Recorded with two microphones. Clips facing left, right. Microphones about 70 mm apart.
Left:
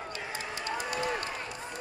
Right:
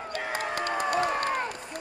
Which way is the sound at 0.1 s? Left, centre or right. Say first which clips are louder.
Right 7 dB; right.